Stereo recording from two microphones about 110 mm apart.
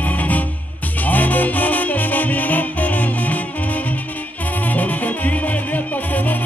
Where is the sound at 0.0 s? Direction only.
15° left (ahead or behind).